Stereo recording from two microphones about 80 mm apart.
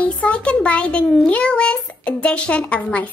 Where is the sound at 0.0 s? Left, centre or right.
Centre.